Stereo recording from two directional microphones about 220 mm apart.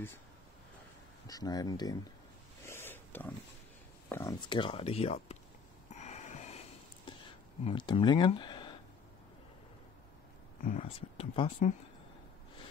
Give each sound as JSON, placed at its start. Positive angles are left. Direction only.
{"t": 1.2, "sound": "speech", "side_deg": 15}
{"t": 2.6, "sound": "pig", "side_deg": 10}
{"t": 4.1, "sound": "speech", "side_deg": 15}
{"t": 5.9, "sound": "snort", "side_deg": 30}
{"t": 7.6, "sound": "speech", "side_deg": 20}
{"t": 10.6, "sound": "speech", "side_deg": 30}